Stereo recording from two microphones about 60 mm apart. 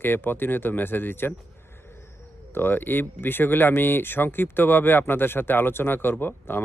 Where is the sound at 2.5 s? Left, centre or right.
Left.